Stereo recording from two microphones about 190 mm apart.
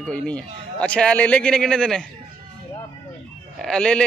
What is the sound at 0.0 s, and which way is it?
Speech, 5° left (ahead or behind).